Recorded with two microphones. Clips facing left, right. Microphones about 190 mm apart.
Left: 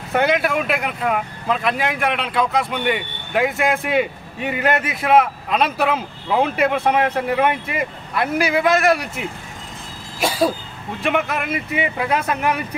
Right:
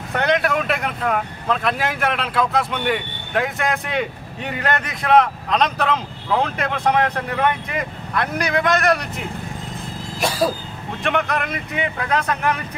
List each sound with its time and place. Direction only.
0.2 s speech: 5° left (ahead or behind)
10.2 s speech: centre (ahead or behind)